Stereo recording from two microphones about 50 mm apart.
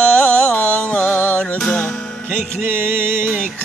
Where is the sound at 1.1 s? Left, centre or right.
Left.